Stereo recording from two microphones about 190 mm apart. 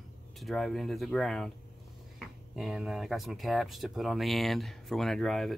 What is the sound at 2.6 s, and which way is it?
Speech, centre (ahead or behind).